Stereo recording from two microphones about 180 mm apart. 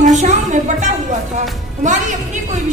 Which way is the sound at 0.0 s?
40° right (ahead or behind).